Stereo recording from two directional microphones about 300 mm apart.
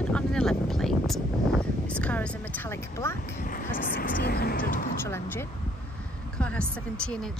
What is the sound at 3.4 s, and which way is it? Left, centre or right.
Speech, left.